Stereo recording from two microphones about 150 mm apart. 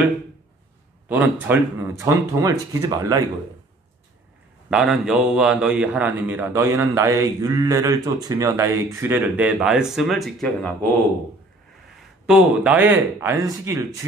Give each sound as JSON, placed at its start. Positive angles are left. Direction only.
{"t": 1.0, "sound": "speech", "side_deg": -10}
{"t": 4.6, "sound": "a man's voice", "side_deg": -5}
{"t": 12.3, "sound": "a man's voice", "side_deg": -10}